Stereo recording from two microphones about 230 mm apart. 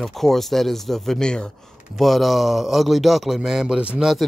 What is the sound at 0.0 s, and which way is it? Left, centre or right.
Speech, centre.